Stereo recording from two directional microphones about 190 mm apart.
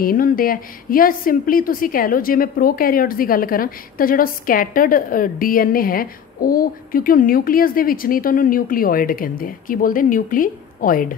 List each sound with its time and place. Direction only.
0.0 s a woman's voice: 50° left (ahead or behind)